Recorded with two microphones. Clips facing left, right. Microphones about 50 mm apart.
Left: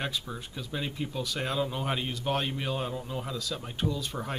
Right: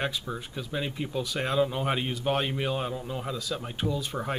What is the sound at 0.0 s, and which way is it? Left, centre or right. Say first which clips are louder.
Speech: right 3 dB; centre.